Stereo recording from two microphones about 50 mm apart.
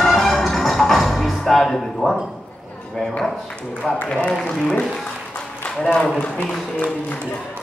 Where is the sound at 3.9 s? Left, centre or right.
Left.